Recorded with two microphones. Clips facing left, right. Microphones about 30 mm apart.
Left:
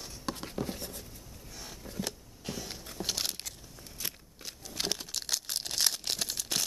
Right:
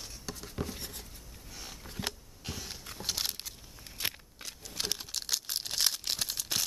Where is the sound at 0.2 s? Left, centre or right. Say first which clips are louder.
Left 9 dB; left.